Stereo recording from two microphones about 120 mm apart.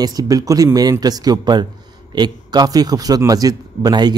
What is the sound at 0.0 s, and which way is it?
Speech, 30° right (ahead or behind).